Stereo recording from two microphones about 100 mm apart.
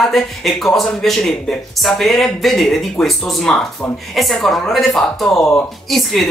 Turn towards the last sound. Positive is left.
turn(degrees=0)  # may be behind; listen again after turning